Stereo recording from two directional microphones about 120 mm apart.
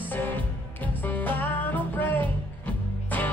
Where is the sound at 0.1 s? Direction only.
15° left (ahead or behind).